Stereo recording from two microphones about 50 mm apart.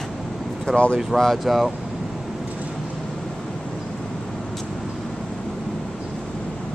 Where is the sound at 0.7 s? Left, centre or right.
Centre.